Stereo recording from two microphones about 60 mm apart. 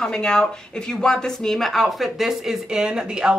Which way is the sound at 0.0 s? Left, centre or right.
Centre.